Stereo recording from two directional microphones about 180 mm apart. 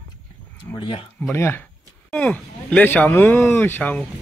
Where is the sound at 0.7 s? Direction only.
15° left (ahead or behind).